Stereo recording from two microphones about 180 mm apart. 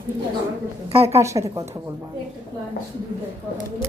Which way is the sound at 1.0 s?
15° right (ahead or behind).